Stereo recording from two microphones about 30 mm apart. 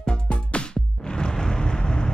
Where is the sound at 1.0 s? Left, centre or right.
Left.